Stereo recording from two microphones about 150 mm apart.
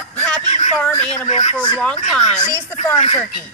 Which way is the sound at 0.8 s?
15° left (ahead or behind).